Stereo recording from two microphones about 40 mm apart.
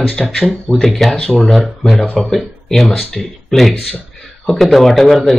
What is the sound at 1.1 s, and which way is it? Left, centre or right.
Speech, left.